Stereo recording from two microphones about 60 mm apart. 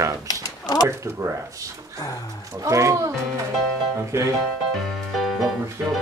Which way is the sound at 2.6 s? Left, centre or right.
Right.